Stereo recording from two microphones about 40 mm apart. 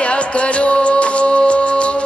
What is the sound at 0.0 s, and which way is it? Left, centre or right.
Music, left.